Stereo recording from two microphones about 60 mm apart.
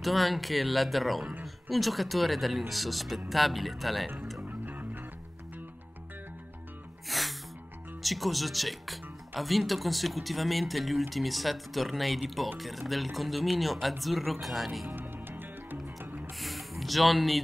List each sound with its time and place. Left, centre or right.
0.0 s speech: centre
4.4 s music: right
7.1 s music: centre
8.0 s speech: centre
15.0 s music: right
16.3 s a sound: centre